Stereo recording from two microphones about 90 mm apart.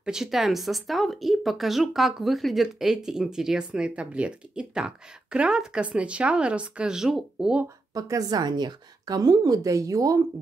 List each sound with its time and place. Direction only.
0.0 s speech: 5° right (ahead or behind)
7.9 s a woman's voice: 40° right (ahead or behind)